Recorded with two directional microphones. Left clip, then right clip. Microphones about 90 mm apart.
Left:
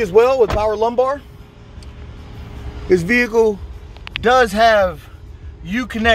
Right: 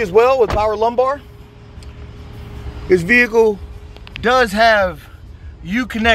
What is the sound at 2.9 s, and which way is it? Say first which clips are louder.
Speech: right 3 dB; 65° left (ahead or behind).